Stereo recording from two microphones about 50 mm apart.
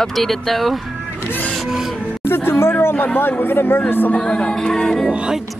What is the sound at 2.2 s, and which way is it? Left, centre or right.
Music, left.